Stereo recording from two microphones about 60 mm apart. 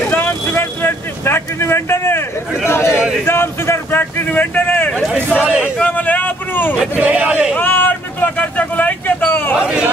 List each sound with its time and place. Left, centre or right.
0.1 s vehicle: left
2.7 s a man's voice: left
6.8 s speech: right
7.5 s vehicle: left
9.6 s a sound: centre